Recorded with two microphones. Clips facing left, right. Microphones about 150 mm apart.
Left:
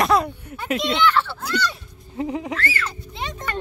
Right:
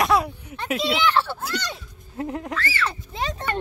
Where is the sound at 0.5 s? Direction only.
Centre (ahead or behind).